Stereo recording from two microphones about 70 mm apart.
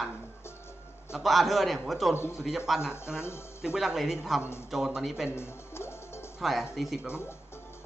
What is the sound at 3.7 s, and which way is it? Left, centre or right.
Speech, centre.